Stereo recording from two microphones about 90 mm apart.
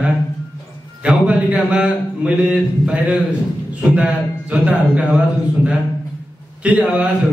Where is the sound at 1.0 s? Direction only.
15° right (ahead or behind).